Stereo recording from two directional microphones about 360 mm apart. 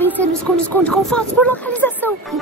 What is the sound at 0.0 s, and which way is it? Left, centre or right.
Speech, centre.